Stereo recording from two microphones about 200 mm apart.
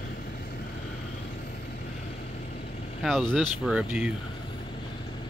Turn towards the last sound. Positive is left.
turn(degrees=-5)  # may be behind; listen again after turning